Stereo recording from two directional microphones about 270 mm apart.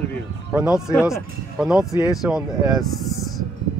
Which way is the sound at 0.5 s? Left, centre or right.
Centre.